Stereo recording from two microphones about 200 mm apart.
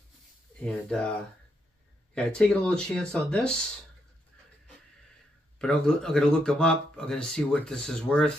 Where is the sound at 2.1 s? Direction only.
5° left (ahead or behind).